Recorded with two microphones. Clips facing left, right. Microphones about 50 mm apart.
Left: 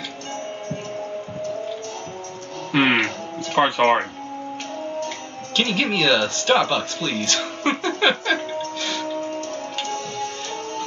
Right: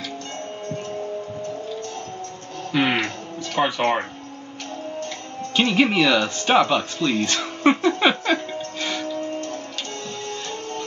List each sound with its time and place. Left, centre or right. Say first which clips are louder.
2.7 s music: left 3 dB; left
3.5 s speech: left 4 dB; left
5.6 s speech: right 3 dB; centre
6.6 s speech: right 2 dB; right
7.2 s speech: right 3 dB; centre
8.0 s a sound: even; centre